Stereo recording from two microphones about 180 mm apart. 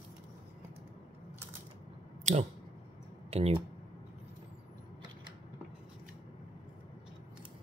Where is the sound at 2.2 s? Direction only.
40° right (ahead or behind).